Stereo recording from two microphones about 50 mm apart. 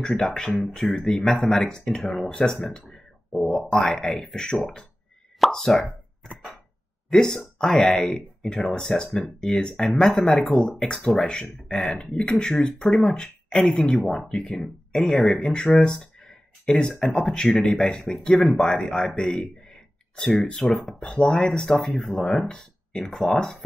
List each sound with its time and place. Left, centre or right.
0.1 s speech: centre
2.7 s a sound: centre
3.7 s speech: centre
5.9 s a sound: right
7.1 s speech: centre
11.1 s speech: centre
13.6 s speech: centre
13.8 s speech: left
19.3 s a sound: centre
20.7 s speech: centre
23.0 s speech: centre